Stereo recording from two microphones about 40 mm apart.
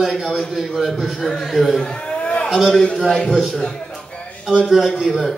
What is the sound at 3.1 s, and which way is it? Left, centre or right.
Speech, centre.